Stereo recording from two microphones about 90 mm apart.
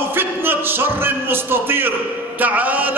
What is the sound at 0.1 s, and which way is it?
A man's voice, 25° right (ahead or behind).